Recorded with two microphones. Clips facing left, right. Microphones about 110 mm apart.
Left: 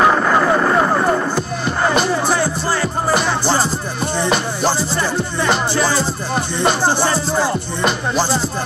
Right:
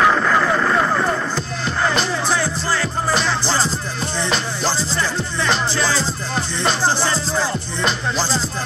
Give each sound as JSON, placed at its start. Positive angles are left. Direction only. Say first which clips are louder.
{"t": 0.0, "sound": "vehicle", "louder": "left 2 dB", "side_deg": 25}
{"t": 1.3, "sound": "music", "louder": "left 3 dB", "side_deg": 10}